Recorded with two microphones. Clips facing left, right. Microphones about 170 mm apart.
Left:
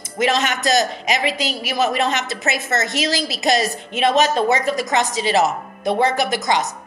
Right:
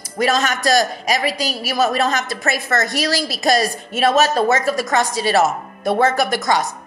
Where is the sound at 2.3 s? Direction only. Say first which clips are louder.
Right 1 dB; 20° left (ahead or behind).